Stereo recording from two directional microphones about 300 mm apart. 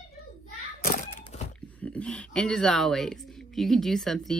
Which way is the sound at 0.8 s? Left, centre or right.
Left.